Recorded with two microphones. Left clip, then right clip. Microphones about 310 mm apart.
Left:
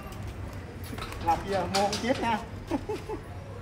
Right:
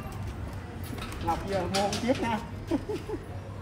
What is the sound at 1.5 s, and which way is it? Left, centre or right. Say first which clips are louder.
Speech: left 1 dB; left.